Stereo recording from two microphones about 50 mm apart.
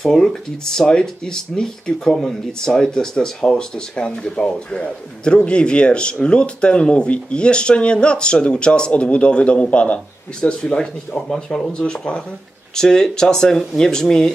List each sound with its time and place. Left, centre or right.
0.0 s speech: centre
12.7 s speech: centre